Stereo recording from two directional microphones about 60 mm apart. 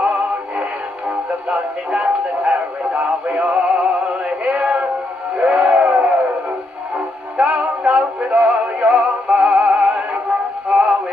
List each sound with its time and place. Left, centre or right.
0.0 s synthetic singing: centre
1.5 s speech: centre
4.5 s a sound: centre
5.4 s music: centre
7.5 s synthetic singing: centre